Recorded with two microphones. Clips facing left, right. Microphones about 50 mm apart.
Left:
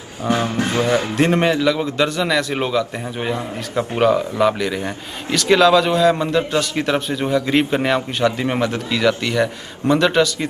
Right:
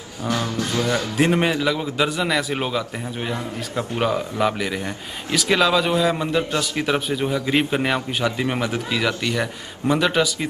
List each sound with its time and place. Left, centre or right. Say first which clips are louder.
0.2 s speech: left 5 dB; left
1.1 s a man's voice: even; centre
3.2 s a man's voice: left 4 dB; left
4.4 s a man's voice: left 4 dB; centre